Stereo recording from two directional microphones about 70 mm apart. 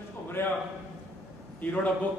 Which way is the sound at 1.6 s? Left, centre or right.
Left.